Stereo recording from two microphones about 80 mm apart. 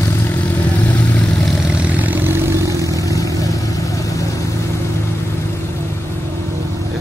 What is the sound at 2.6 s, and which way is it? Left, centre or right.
Vehicle, right.